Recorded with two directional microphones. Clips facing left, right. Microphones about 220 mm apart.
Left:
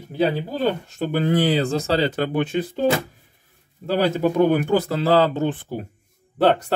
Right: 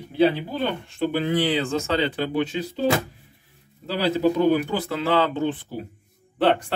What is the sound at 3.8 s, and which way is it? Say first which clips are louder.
Speech: left 1 dB; 50° left (ahead or behind).